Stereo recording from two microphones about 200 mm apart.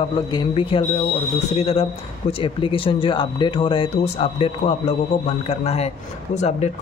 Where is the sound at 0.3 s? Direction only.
25° left (ahead or behind).